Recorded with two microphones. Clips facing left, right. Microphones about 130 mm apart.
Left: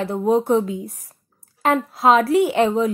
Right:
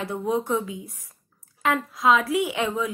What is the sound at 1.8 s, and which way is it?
A woman's voice, 35° left (ahead or behind).